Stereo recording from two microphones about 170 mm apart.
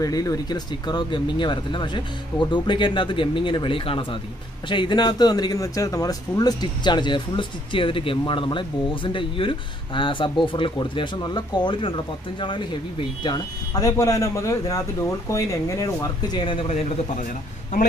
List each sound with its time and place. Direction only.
0.0 s speech: 20° left (ahead or behind); by 17.3 s 35° left (ahead or behind)